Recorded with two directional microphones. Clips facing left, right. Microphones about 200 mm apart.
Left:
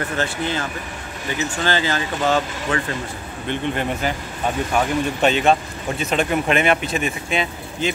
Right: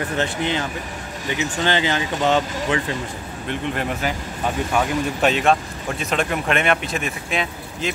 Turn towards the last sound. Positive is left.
turn(degrees=0)  # may be behind; listen again after turning